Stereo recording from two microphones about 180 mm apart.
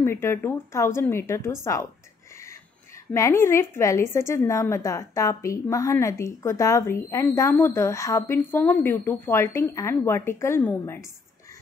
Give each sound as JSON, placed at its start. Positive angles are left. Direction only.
{"t": 0.0, "sound": "a woman's voice", "side_deg": 15}
{"t": 3.1, "sound": "a woman's voice", "side_deg": 15}